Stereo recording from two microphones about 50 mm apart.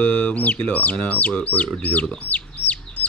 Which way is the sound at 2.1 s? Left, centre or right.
Left.